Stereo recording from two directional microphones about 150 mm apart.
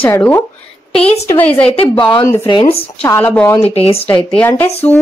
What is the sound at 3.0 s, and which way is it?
Speech, 15° left (ahead or behind).